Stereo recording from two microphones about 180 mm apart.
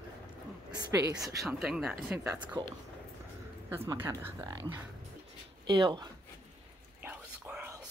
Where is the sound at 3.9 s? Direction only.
15° right (ahead or behind).